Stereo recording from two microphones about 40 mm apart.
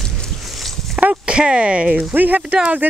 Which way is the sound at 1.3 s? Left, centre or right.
Right.